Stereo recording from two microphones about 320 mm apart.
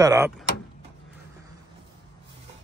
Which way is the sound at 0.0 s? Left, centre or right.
Centre.